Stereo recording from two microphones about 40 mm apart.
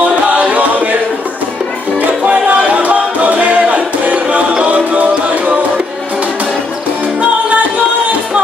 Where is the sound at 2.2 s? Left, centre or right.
Right.